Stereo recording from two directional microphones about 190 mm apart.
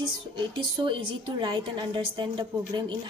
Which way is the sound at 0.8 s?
25° right (ahead or behind).